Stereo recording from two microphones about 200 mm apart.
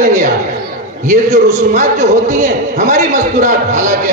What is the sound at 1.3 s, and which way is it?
A man's voice, 35° right (ahead or behind).